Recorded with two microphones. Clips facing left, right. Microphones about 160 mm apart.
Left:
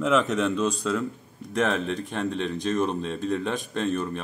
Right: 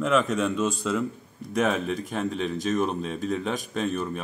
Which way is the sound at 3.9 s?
Centre (ahead or behind).